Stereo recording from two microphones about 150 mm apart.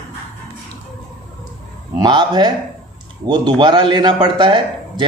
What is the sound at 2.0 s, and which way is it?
Speech, 30° right (ahead or behind).